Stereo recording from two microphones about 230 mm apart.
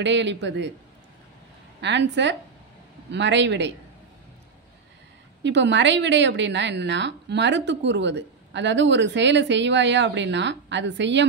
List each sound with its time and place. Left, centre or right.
0.0 s a woman's voice: right
1.8 s a woman's voice: right
5.4 s a woman's voice: right